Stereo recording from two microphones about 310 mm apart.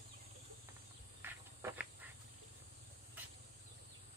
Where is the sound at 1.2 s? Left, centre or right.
Centre.